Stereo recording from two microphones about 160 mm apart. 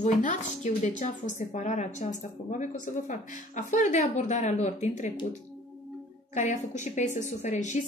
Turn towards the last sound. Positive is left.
turn(degrees=50)  # may be behind; listen again after turning